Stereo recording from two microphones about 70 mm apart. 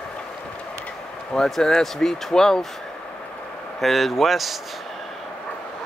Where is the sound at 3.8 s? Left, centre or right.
Centre.